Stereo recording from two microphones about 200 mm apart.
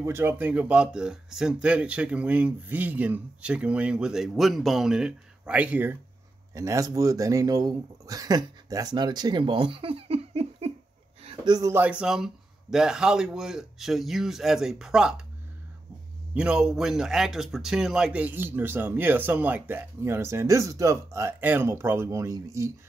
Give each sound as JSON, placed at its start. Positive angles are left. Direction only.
{"t": 0.0, "sound": "speech", "side_deg": -10}
{"t": 16.3, "sound": "speech", "side_deg": -5}